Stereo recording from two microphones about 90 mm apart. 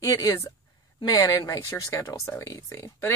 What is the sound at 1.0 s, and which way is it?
Speech, 45° left (ahead or behind).